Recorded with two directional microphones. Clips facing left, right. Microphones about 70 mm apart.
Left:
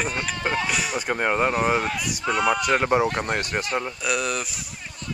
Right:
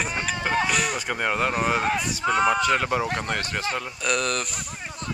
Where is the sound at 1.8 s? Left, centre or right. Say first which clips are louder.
Right 3 dB; right.